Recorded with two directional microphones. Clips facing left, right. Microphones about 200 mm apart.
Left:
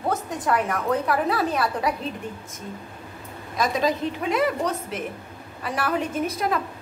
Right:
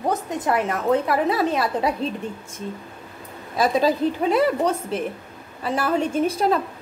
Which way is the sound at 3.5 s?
35° right (ahead or behind).